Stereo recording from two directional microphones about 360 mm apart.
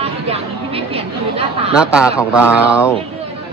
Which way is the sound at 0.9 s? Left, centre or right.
Centre.